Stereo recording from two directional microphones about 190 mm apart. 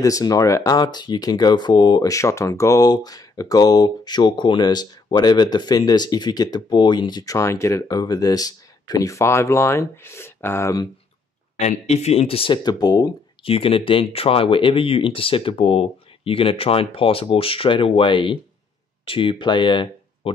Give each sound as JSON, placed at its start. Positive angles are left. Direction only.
{"t": 0.0, "sound": "speech", "side_deg": 20}
{"t": 11.5, "sound": "speech", "side_deg": 35}